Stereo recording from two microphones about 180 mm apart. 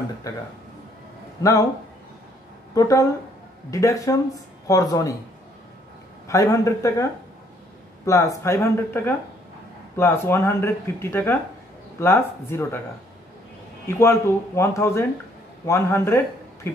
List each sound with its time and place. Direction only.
1.4 s speech: 20° left (ahead or behind)
2.7 s speech: 20° left (ahead or behind)
6.2 s speech: 20° left (ahead or behind)
13.8 s speech: 15° left (ahead or behind)